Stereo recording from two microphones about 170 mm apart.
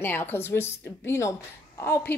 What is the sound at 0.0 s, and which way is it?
Speech, 15° left (ahead or behind).